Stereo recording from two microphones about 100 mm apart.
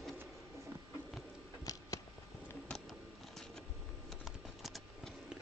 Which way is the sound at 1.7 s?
35° left (ahead or behind).